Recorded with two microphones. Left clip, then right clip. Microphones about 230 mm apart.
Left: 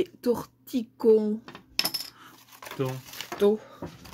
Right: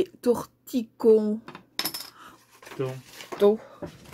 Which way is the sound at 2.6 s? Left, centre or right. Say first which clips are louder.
Even; left.